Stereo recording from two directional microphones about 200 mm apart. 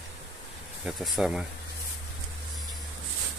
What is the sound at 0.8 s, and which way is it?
Speech, centre (ahead or behind).